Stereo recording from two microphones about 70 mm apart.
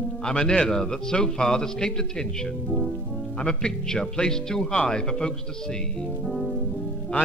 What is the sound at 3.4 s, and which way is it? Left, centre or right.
A man's voice, centre.